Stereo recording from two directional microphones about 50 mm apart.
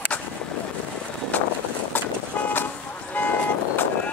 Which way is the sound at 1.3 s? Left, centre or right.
Left.